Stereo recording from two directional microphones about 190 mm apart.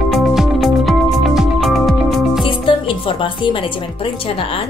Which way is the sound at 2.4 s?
25° left (ahead or behind).